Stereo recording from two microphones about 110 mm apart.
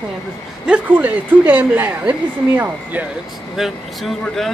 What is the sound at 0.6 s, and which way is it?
A woman's voice, 10° right (ahead or behind).